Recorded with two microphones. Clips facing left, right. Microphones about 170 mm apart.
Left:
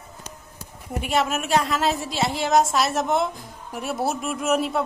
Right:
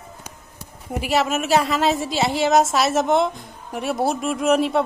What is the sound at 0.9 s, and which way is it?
Speech, centre (ahead or behind).